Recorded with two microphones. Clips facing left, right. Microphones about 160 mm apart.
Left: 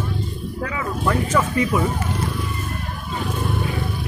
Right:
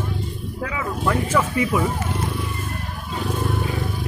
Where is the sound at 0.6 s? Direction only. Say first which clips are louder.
Even; 10° right (ahead or behind).